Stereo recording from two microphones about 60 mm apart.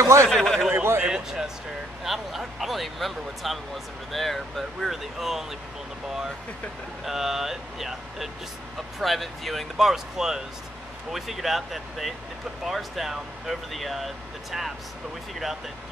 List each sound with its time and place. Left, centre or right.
0.0 s speech: right
0.3 s speech: centre
0.7 s speech: right
1.0 s speech: centre
7.1 s speech: centre